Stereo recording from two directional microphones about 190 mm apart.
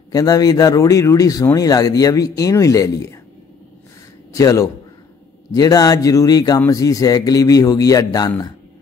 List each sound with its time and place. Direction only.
0.1 s speech: 20° left (ahead or behind)
4.3 s a man's voice: 15° left (ahead or behind)